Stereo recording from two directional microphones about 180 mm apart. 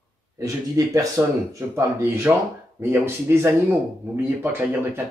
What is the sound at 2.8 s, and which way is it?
Speech, 10° right (ahead or behind).